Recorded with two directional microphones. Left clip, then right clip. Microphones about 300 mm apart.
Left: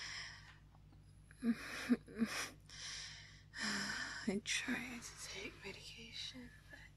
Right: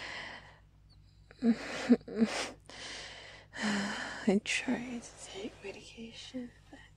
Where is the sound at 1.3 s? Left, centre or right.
Right.